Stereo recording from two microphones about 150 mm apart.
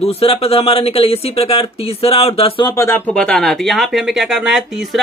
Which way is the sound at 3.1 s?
5° left (ahead or behind).